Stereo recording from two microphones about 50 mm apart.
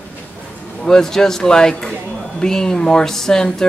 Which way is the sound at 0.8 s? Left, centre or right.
Centre.